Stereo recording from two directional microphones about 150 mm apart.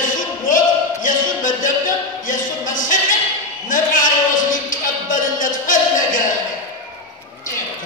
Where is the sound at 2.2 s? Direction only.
60° left (ahead or behind).